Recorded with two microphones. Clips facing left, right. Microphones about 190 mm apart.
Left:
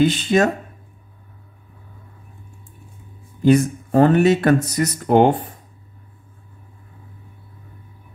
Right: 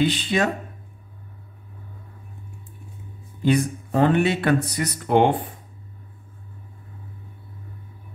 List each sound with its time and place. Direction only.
0.0 s speech: 45° left (ahead or behind)
3.4 s speech: 45° left (ahead or behind)